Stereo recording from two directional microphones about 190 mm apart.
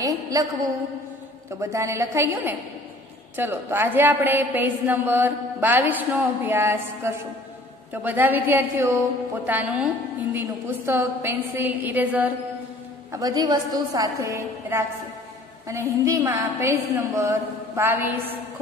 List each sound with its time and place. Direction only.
0.0 s a sound: 20° right (ahead or behind)
1.6 s a woman's voice: 15° right (ahead or behind)
13.1 s a woman's voice: 20° right (ahead or behind)